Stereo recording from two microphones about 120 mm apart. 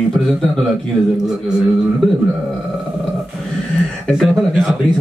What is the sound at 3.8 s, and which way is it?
Speech, centre (ahead or behind).